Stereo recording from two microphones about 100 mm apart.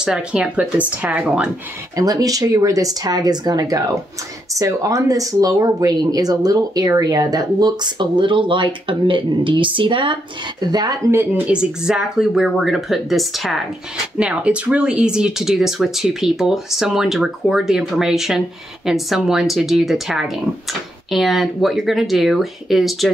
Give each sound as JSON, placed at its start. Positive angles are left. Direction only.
{"t": 0.0, "sound": "speech", "side_deg": -10}
{"t": 2.0, "sound": "speech", "side_deg": -35}
{"t": 10.7, "sound": "speech", "side_deg": -40}
{"t": 11.1, "sound": "speech", "side_deg": -20}
{"t": 11.5, "sound": "speech", "side_deg": -10}